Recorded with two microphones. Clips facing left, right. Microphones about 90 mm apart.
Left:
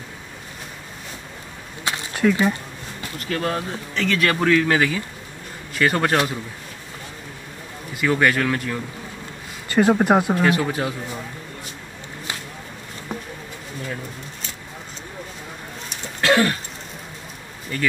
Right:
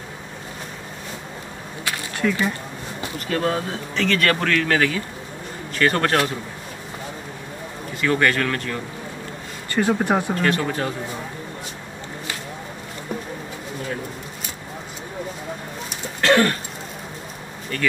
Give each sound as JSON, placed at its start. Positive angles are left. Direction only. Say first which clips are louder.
{"t": 2.2, "sound": "speech", "louder": "left 4 dB", "side_deg": 20}
{"t": 3.3, "sound": "speech", "louder": "right 2 dB", "side_deg": -5}
{"t": 7.9, "sound": "speech", "louder": "left 1 dB", "side_deg": 10}
{"t": 16.3, "sound": "throat clearing", "louder": "right 1 dB", "side_deg": 5}